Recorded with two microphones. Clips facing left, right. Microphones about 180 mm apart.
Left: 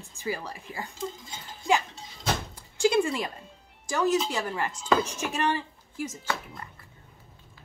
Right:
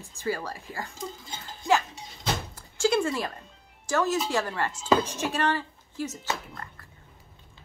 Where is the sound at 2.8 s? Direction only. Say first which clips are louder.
Left 1 dB; 15° left (ahead or behind).